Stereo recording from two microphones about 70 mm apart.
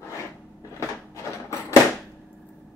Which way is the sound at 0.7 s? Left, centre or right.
Left.